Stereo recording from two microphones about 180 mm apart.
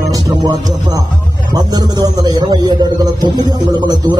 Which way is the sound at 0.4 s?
25° right (ahead or behind).